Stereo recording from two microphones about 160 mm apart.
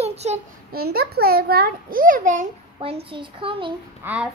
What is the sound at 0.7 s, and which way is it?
A child's voice, 70° right (ahead or behind).